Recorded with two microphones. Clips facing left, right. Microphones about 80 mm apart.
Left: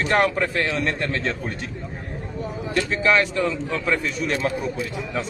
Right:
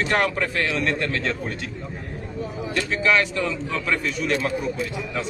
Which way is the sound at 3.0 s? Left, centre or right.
Left.